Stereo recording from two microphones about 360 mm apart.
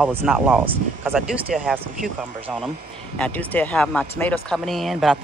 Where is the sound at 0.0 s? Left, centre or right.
Centre.